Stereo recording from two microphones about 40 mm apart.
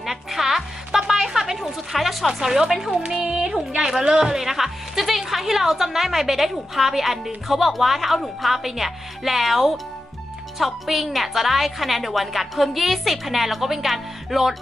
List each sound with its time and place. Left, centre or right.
0.0 s music: centre
1.0 s a sound: centre
1.6 s a woman's voice: centre
3.2 s music: right
4.0 s speech: centre